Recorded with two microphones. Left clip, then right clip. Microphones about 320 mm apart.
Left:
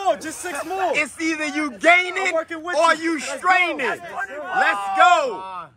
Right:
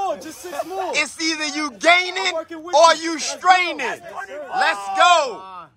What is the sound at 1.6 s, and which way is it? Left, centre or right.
A man's voice, centre.